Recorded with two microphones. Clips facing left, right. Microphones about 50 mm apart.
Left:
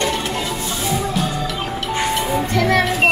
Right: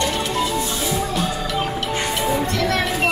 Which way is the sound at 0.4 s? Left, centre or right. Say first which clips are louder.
Right 2 dB; centre.